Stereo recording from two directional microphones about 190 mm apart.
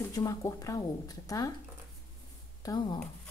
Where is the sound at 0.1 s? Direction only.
20° left (ahead or behind).